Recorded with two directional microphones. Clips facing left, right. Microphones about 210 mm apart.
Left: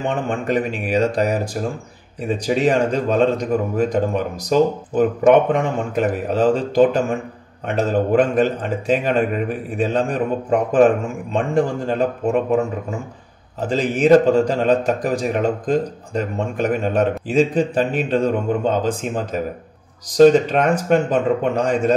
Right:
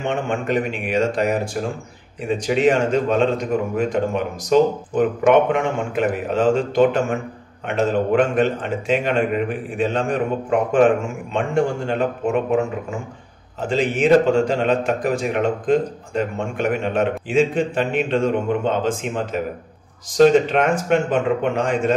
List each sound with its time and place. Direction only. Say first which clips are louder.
0.1 s a man's voice: right 1 dB; 35° left (ahead or behind)
11.3 s a man's voice: left 1 dB; 35° left (ahead or behind)
13.7 s a man's voice: left 2 dB; 40° left (ahead or behind)